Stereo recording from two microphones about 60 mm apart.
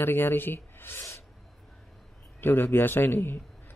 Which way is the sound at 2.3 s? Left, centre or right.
Left.